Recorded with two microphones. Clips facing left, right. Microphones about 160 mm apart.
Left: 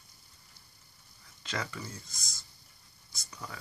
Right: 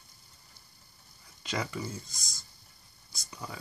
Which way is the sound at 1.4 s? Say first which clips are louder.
Right 4 dB; 15° right (ahead or behind).